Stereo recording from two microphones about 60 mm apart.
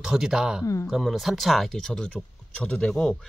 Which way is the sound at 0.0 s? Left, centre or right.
Centre.